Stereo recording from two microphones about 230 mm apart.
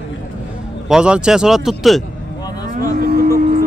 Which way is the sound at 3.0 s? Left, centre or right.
Right.